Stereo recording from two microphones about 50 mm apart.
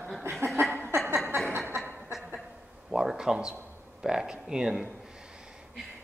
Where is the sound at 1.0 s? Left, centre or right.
Right.